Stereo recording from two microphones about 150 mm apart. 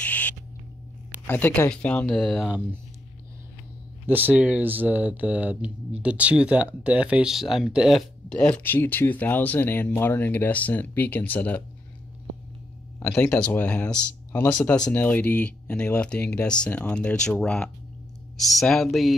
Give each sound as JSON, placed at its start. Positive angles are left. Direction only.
{"t": 0.0, "sound": "owl", "side_deg": 10}
{"t": 1.2, "sound": "speech", "side_deg": 15}
{"t": 4.0, "sound": "speech", "side_deg": -15}
{"t": 13.0, "sound": "speech", "side_deg": 15}